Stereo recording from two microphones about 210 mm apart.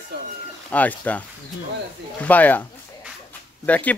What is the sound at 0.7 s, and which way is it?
Speech, 5° left (ahead or behind).